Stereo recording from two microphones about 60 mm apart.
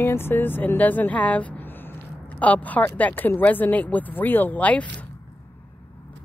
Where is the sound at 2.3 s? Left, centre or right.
Left.